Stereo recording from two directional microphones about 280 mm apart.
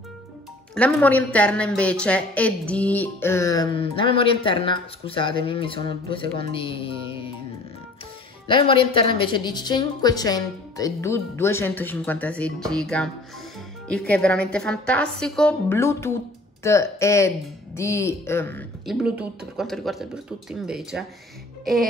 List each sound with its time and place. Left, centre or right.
0.7 s a woman's voice: centre
6.5 s music: centre
8.5 s a woman's voice: centre